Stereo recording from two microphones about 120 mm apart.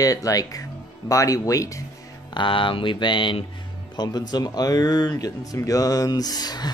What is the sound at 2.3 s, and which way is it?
Speech, 45° left (ahead or behind).